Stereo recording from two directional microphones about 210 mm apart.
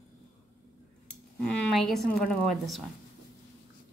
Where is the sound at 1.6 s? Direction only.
Centre (ahead or behind).